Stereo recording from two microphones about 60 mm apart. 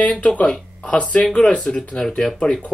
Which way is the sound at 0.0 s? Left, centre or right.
Left.